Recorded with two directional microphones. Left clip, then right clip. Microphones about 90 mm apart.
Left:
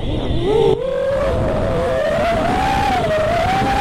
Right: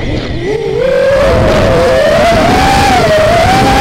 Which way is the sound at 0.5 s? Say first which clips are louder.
Right 5 dB; 35° right (ahead or behind).